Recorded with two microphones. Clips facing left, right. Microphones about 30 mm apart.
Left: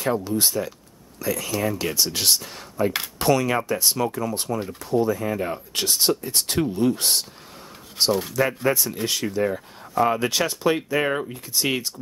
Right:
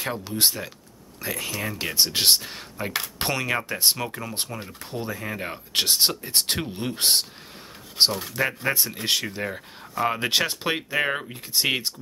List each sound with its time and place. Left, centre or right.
0.0 s speech: right
5.7 s speech: right
9.0 s speech: right; by 11.3 s centre
11.5 s speech: right